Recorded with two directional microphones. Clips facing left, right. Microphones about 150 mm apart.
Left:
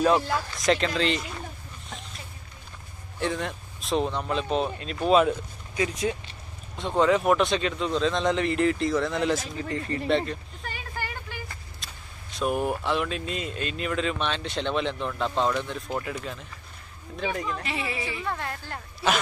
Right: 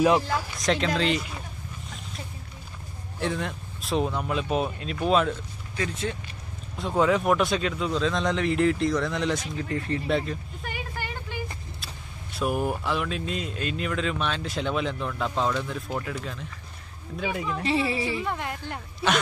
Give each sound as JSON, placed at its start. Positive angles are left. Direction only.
{"t": 0.6, "sound": "speech", "side_deg": 0}
{"t": 3.2, "sound": "speech", "side_deg": 0}
{"t": 6.8, "sound": "speech", "side_deg": 0}
{"t": 10.6, "sound": "vehicle", "side_deg": -20}
{"t": 11.8, "sound": "speech", "side_deg": -5}
{"t": 17.6, "sound": "speech", "side_deg": -30}
{"t": 18.2, "sound": "speech", "side_deg": -15}